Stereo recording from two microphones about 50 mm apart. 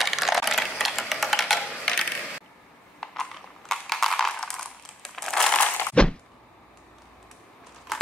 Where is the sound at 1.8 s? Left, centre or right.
Centre.